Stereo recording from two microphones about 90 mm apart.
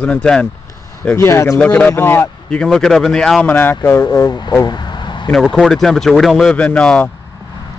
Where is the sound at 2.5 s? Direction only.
10° left (ahead or behind).